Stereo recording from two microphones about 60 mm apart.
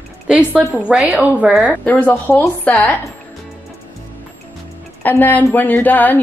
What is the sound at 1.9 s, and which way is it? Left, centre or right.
A woman's voice, left.